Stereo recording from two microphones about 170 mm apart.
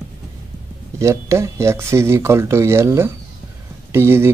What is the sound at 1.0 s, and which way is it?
Speech, 15° right (ahead or behind).